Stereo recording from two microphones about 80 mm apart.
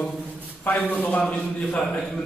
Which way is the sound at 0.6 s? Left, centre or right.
Left.